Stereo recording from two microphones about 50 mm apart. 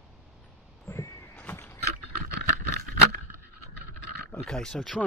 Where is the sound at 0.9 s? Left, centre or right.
Left.